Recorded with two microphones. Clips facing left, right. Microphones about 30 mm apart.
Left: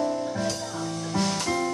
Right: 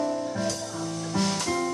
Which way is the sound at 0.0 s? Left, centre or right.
Centre.